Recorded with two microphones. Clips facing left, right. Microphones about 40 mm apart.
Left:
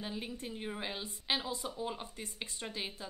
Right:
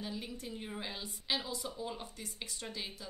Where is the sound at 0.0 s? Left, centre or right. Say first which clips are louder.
Left 1 dB; left.